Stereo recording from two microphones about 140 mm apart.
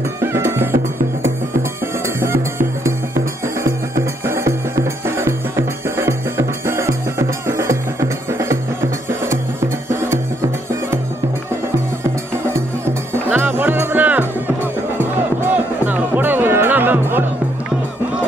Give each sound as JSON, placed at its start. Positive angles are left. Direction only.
{"t": 0.2, "sound": "music", "side_deg": -20}
{"t": 2.1, "sound": "music", "side_deg": -20}
{"t": 9.8, "sound": "music", "side_deg": -15}
{"t": 13.1, "sound": "music", "side_deg": -15}